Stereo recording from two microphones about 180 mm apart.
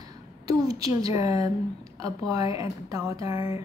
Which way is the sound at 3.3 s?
30° left (ahead or behind).